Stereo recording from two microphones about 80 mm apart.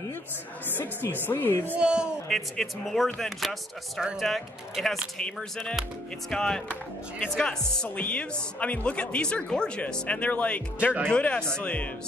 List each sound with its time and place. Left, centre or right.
1.2 s speech: left
1.8 s speech: centre
2.2 s speech: centre
6.3 s speech: centre